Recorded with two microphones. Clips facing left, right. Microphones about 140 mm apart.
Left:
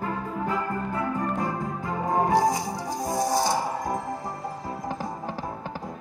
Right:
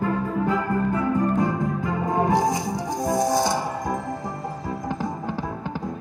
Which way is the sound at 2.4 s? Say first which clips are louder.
Right 1 dB; 20° right (ahead or behind).